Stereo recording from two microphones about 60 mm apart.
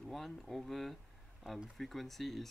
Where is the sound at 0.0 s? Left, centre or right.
Centre.